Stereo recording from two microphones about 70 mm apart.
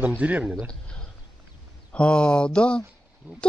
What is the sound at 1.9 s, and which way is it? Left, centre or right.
Speech, centre.